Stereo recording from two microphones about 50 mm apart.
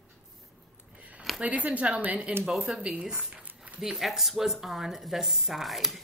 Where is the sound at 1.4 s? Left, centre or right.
Right.